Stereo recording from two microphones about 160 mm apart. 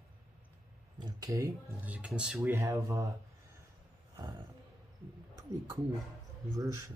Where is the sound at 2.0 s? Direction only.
5° right (ahead or behind).